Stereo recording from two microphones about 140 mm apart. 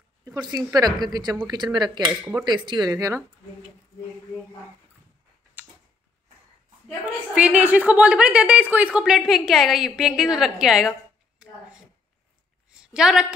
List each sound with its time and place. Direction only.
0.2 s speech: 30° right (ahead or behind)
7.3 s speech: 10° right (ahead or behind)
11.4 s a sound: 5° right (ahead or behind)
12.7 s a woman's voice: 5° right (ahead or behind)